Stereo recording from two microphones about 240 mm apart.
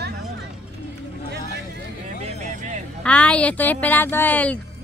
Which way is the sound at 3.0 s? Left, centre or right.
Centre.